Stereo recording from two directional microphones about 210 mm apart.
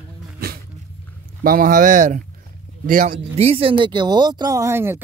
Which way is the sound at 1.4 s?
40° right (ahead or behind).